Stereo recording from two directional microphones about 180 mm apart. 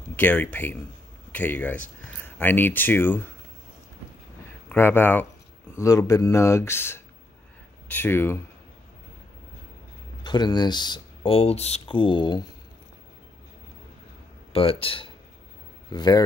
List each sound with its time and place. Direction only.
0.1 s speech: 10° left (ahead or behind)
4.6 s speech: 10° left (ahead or behind)
10.2 s speech: 25° left (ahead or behind)
14.5 s speech: 30° left (ahead or behind)